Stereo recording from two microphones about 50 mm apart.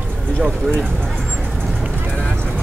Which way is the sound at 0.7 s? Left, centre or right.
Centre.